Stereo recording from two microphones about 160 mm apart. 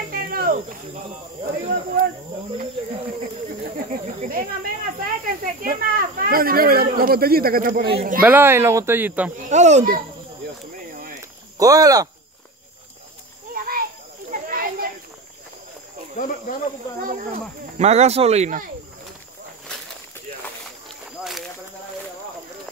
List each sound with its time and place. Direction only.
0.1 s cricket: 65° right (ahead or behind)
1.4 s speech: 65° right (ahead or behind)
3.4 s a sound: 65° right (ahead or behind)
4.3 s speech: 65° right (ahead or behind)
8.2 s speech: 10° right (ahead or behind)
9.5 s speech: 45° right (ahead or behind)
11.5 s speech: 20° right (ahead or behind)
13.5 s insect: 65° right (ahead or behind)
14.3 s a sound: 60° right (ahead or behind)
16.2 s speech: 60° left (ahead or behind)
17.7 s speech: 45° right (ahead or behind)
21.2 s a sound: centre (ahead or behind)